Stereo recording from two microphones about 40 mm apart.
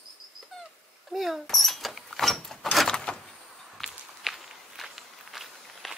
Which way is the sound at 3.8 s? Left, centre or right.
Centre.